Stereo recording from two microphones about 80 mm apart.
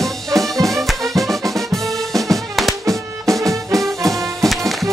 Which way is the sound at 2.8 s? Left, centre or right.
Right.